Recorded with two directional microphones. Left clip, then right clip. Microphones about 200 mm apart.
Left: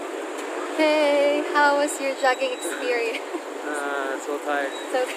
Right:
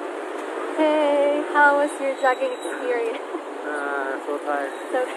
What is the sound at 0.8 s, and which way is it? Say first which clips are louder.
Speech: even; 10° left (ahead or behind).